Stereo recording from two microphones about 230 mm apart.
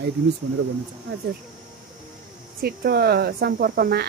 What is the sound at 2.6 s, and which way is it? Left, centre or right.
Speech, right.